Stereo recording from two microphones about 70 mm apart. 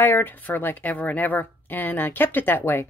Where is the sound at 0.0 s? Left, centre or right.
Left.